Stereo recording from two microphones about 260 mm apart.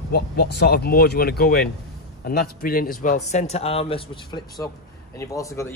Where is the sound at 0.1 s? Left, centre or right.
Left.